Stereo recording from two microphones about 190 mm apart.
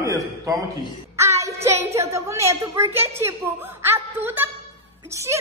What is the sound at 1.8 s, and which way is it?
A woman's voice, 15° right (ahead or behind).